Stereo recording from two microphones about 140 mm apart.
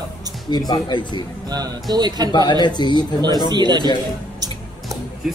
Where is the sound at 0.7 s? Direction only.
30° left (ahead or behind).